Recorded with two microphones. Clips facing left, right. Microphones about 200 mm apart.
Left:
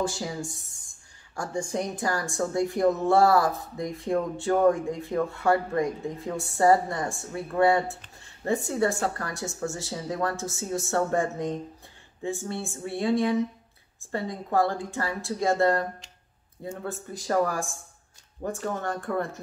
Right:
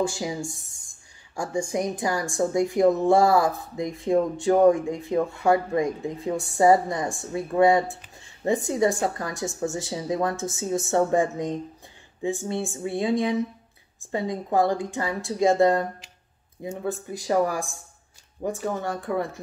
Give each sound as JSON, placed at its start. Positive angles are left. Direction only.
{"t": 0.0, "sound": "speech", "side_deg": -15}